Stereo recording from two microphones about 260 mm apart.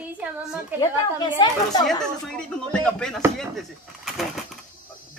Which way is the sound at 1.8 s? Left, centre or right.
Centre.